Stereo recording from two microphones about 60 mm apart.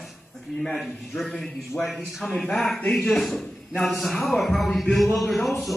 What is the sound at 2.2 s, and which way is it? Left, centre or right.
Speech, centre.